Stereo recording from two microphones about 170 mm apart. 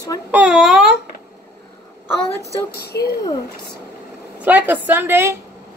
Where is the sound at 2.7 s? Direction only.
65° left (ahead or behind).